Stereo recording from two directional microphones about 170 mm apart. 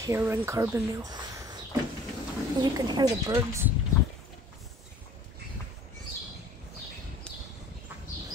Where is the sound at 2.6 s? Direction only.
25° right (ahead or behind).